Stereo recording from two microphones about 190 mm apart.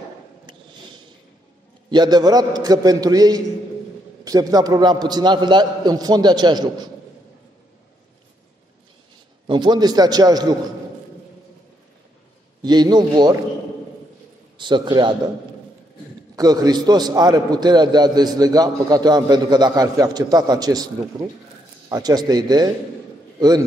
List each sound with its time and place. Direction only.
1.9 s a man's voice: 20° right (ahead or behind)
9.5 s a man's voice: 25° right (ahead or behind)
12.6 s a man's voice: 20° right (ahead or behind)
14.6 s a man's voice: 25° right (ahead or behind)
16.3 s a man's voice: 20° right (ahead or behind)